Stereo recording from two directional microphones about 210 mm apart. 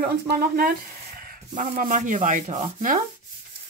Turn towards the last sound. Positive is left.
turn(degrees=-40)  # may be behind; listen again after turning